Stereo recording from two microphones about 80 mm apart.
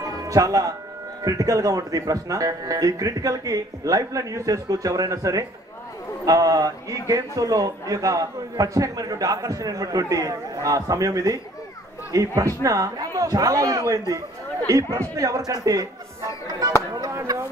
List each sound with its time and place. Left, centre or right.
0.0 s music: right
1.2 s a man's voice: right